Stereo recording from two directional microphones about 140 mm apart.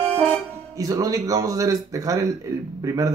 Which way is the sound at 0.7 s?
25° right (ahead or behind).